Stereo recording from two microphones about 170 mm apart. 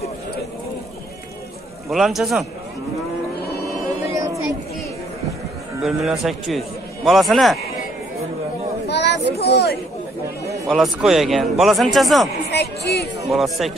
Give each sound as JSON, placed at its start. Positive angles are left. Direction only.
{"t": 1.9, "sound": "a man's voice", "side_deg": 0}
{"t": 5.8, "sound": "a man's voice", "side_deg": 0}
{"t": 8.8, "sound": "a sound", "side_deg": 85}
{"t": 9.4, "sound": "speech", "side_deg": 70}
{"t": 10.7, "sound": "a man's voice", "side_deg": 0}
{"t": 12.4, "sound": "a sound", "side_deg": 75}
{"t": 13.3, "sound": "a man's voice", "side_deg": 0}